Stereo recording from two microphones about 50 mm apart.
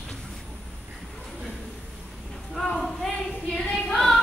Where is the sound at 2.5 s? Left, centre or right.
Centre.